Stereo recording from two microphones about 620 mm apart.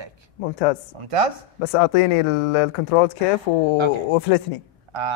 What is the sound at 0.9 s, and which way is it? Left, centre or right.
Speech, right.